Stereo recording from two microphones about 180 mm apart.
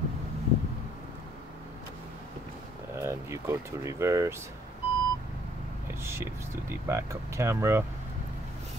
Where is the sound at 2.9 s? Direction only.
15° right (ahead or behind).